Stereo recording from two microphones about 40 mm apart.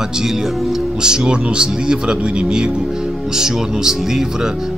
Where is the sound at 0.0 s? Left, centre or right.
Centre.